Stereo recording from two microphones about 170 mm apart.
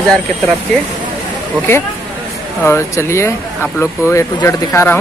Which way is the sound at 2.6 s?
15° left (ahead or behind).